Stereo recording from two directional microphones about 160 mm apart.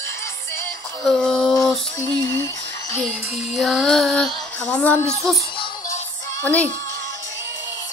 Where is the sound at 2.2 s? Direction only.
20° left (ahead or behind).